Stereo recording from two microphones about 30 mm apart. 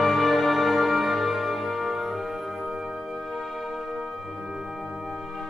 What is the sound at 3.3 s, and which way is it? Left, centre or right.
Music, centre.